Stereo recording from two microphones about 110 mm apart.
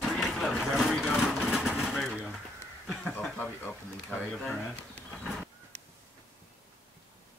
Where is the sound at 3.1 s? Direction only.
10° left (ahead or behind).